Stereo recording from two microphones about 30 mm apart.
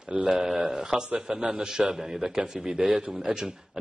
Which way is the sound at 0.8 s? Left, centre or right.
Right.